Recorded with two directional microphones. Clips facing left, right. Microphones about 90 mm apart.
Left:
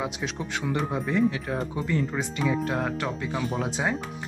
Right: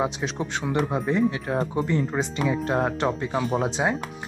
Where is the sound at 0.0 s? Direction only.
30° right (ahead or behind).